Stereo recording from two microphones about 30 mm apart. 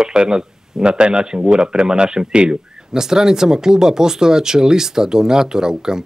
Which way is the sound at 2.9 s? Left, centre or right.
Centre.